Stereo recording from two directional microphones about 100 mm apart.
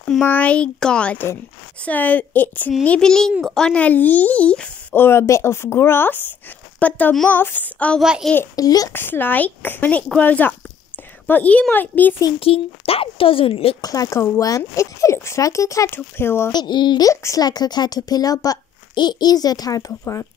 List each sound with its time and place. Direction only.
0.2 s speech: 15° left (ahead or behind)
5.0 s speech: 25° left (ahead or behind)
8.0 s a child's voice: 5° right (ahead or behind)
8.5 s speech: 40° left (ahead or behind)
8.9 s speech: 20° left (ahead or behind)
12.4 s a woman's voice: 70° left (ahead or behind)
13.7 s speech: 40° left (ahead or behind)
16.5 s speech: 50° left (ahead or behind)
17.1 s speech: 30° left (ahead or behind)